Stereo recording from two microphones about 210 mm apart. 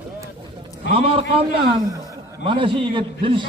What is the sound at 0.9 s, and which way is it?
A man's voice, 25° right (ahead or behind).